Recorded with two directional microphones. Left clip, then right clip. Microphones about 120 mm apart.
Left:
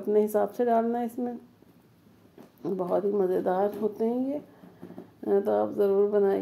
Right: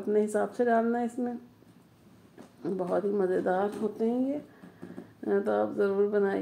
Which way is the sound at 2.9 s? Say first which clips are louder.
Left 2 dB; 30° left (ahead or behind).